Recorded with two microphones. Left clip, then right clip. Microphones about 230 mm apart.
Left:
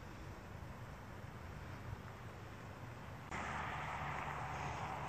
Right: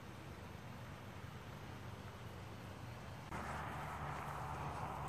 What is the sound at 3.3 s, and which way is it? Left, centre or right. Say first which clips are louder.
Vehicle: left 3 dB; left.